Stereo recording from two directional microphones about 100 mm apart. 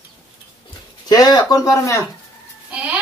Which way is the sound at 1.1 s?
40° left (ahead or behind).